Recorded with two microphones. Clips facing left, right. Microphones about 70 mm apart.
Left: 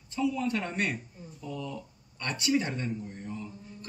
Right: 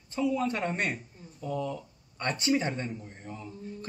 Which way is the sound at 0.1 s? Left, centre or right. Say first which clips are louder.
Right 1 dB; right.